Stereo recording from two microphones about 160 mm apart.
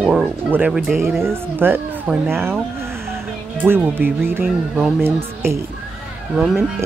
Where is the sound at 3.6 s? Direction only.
10° right (ahead or behind).